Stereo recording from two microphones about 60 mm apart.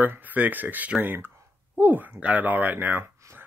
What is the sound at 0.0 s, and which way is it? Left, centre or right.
Speech, right.